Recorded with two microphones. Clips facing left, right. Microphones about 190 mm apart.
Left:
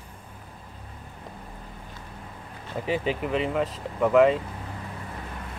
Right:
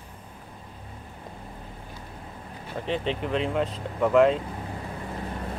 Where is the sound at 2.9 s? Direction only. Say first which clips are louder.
Left 1 dB; 5° left (ahead or behind).